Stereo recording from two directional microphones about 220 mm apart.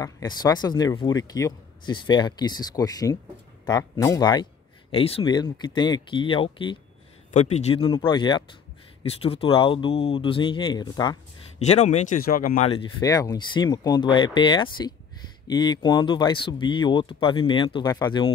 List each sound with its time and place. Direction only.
0.0 s speech: 15° left (ahead or behind)
11.6 s speech: 30° left (ahead or behind)